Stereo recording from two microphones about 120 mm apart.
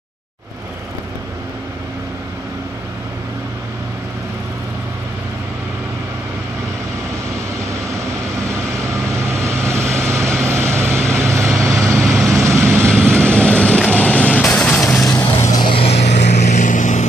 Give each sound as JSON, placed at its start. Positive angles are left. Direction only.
{"t": 8.8, "sound": "vehicle", "side_deg": -25}
{"t": 13.1, "sound": "vehicle", "side_deg": 10}
{"t": 15.0, "sound": "vehicle", "side_deg": 25}
{"t": 15.6, "sound": "vehicle", "side_deg": 50}